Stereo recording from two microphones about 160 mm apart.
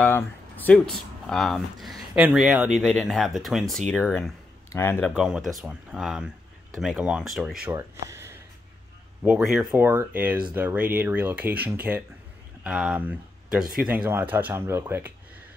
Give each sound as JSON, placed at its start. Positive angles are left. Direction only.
{"t": 0.0, "sound": "speech", "side_deg": 10}
{"t": 4.7, "sound": "speech", "side_deg": 15}
{"t": 5.1, "sound": "speech", "side_deg": -5}
{"t": 7.7, "sound": "speech", "side_deg": -15}
{"t": 9.2, "sound": "speech", "side_deg": -5}
{"t": 9.8, "sound": "speech", "side_deg": -15}